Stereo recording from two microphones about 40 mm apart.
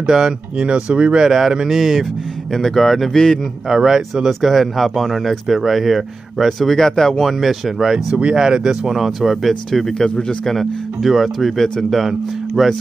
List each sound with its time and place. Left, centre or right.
0.0 s speech: centre
2.5 s speech: centre
3.6 s speech: centre
4.1 s speech: centre
7.3 s speech: centre
9.5 s speech: centre
11.0 s speech: centre